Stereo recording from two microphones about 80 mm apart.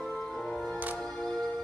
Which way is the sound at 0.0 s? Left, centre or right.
Centre.